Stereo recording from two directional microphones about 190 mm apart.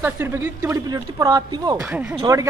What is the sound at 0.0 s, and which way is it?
Speech, 10° right (ahead or behind).